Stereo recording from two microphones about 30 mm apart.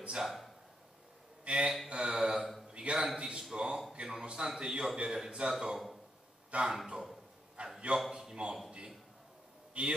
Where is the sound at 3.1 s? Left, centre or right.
Right.